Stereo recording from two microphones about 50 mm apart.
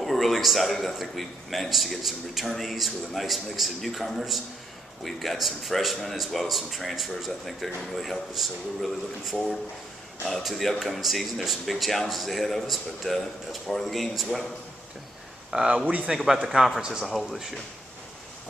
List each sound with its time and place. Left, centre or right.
0.0 s a man's voice: centre
15.5 s speech: centre
16.4 s a man's voice: centre